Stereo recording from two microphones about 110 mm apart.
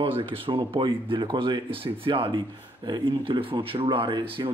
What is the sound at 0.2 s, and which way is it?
Speech, 55° right (ahead or behind).